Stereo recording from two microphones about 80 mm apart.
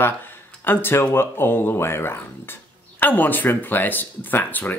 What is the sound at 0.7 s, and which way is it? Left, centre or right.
Speech, left.